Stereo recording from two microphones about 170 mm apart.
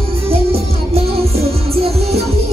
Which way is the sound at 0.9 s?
35° right (ahead or behind).